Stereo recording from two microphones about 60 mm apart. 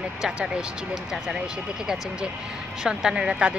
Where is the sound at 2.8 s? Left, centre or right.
Centre.